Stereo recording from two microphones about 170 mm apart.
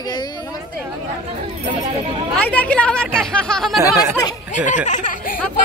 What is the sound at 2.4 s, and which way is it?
Speech, 10° left (ahead or behind).